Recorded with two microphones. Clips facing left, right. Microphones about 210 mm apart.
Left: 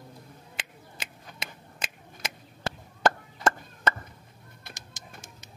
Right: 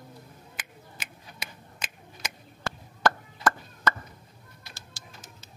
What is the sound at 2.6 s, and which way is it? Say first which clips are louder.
Chop: left 1 dB; 25° left (ahead or behind).